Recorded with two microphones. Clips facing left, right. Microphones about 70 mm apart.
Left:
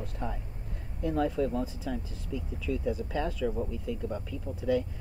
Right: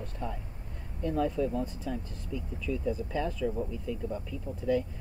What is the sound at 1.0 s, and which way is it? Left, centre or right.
Speech, centre.